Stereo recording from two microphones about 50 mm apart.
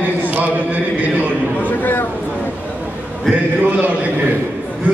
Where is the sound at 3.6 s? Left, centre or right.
Right.